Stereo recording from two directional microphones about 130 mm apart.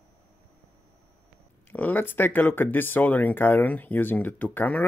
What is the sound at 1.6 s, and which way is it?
Speech, 15° left (ahead or behind).